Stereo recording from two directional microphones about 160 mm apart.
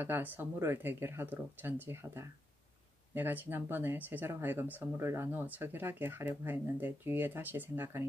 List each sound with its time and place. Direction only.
0.0 s speech: 10° right (ahead or behind)